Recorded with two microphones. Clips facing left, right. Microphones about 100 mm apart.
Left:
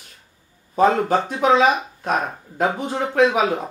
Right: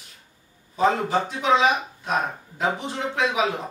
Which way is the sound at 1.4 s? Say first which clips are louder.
Left 4 dB; 50° left (ahead or behind).